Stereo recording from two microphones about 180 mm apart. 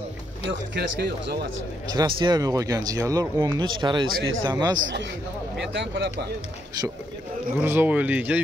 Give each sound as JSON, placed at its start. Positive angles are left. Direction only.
{"t": 0.5, "sound": "speech", "side_deg": -65}
{"t": 1.9, "sound": "speech", "side_deg": -25}
{"t": 5.7, "sound": "speech", "side_deg": -80}
{"t": 7.6, "sound": "a man's voice", "side_deg": -10}